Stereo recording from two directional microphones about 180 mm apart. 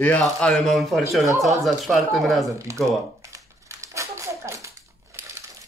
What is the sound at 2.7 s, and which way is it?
Speech, 15° right (ahead or behind).